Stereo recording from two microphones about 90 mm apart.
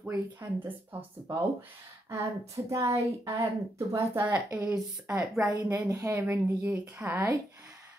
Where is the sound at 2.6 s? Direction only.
35° right (ahead or behind).